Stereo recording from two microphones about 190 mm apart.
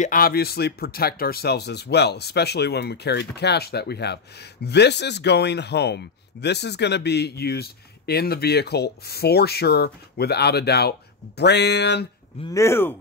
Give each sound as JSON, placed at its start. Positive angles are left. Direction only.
{"t": 0.0, "sound": "speech", "side_deg": 45}
{"t": 12.4, "sound": "speech", "side_deg": 15}